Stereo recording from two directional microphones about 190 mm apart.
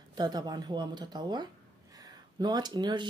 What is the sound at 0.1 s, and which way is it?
Speech, 20° right (ahead or behind).